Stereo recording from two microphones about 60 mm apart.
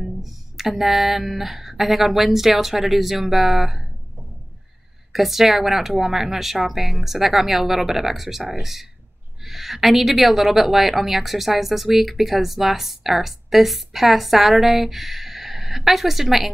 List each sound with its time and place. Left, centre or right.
0.0 s a woman's voice: centre
5.1 s a woman's voice: centre